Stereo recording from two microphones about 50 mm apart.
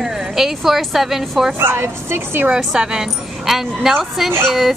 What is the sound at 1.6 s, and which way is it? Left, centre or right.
Speech, right.